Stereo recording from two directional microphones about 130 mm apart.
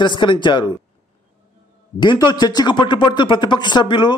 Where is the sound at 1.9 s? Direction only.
35° left (ahead or behind).